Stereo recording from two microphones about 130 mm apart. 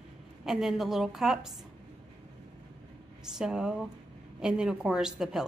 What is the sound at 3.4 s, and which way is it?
A woman's voice, 5° right (ahead or behind).